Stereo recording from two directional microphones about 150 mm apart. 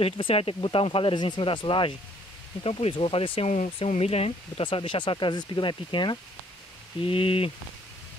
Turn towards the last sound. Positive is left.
turn(degrees=40)  # may be behind; listen again after turning